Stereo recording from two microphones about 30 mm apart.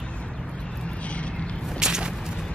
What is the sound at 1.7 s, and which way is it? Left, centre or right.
Whip, right.